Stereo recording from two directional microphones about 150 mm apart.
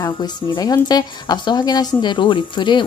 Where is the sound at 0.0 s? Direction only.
30° left (ahead or behind).